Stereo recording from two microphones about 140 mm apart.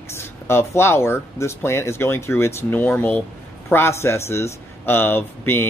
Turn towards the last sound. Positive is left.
turn(degrees=15)  # may be behind; listen again after turning